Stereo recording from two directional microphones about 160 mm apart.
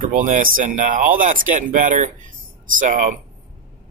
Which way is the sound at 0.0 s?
55° right (ahead or behind).